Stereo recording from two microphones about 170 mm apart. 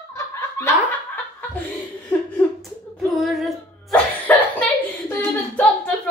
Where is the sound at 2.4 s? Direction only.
Centre (ahead or behind).